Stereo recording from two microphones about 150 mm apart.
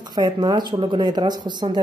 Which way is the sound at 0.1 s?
25° right (ahead or behind).